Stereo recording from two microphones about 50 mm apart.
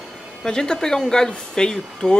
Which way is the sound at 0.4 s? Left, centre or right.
Centre.